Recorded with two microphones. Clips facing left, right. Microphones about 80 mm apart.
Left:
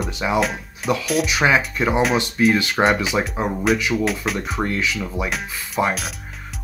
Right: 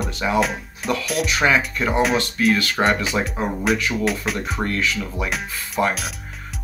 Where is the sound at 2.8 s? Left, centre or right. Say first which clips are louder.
Even; centre.